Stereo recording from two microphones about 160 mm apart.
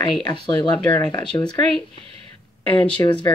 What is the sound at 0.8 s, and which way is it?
Speech, 10° left (ahead or behind).